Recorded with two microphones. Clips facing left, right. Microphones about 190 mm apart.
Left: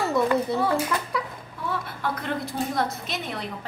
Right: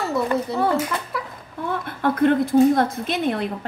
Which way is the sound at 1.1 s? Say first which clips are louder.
Even; 5° right (ahead or behind).